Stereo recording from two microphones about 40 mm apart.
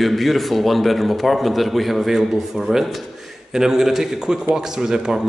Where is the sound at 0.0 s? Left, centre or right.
Centre.